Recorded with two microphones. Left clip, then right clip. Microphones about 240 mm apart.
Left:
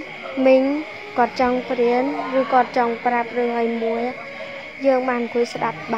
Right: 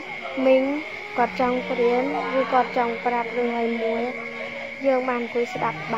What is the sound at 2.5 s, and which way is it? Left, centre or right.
Speech, left.